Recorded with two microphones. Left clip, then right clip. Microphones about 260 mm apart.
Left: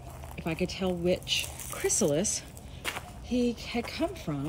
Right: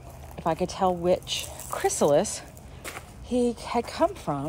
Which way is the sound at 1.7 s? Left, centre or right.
Centre.